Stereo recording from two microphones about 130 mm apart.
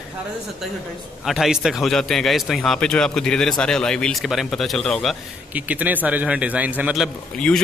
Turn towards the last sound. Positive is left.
turn(degrees=5)  # may be behind; listen again after turning